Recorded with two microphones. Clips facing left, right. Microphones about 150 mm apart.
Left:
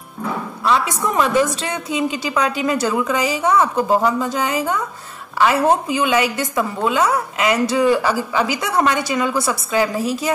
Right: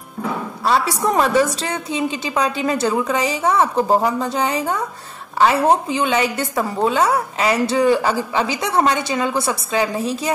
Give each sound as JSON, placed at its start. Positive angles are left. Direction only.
{"t": 0.7, "sound": "a woman's voice", "side_deg": -35}
{"t": 5.9, "sound": "a woman's voice", "side_deg": -30}